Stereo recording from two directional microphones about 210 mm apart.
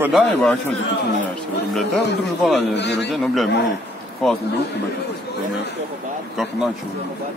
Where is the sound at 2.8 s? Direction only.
55° left (ahead or behind).